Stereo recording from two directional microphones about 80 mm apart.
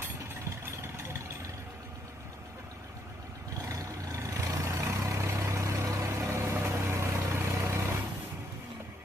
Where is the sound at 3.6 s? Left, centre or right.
Right.